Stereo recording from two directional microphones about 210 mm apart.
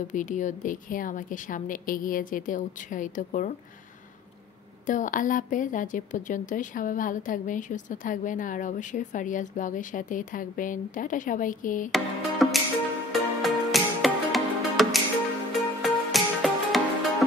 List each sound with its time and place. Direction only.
0.1 s a woman's voice: 35° left (ahead or behind)
4.8 s a woman's voice: 40° left (ahead or behind)
11.9 s music: centre (ahead or behind)